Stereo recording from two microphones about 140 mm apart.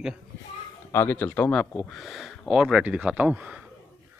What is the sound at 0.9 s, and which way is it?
Speech, 15° left (ahead or behind).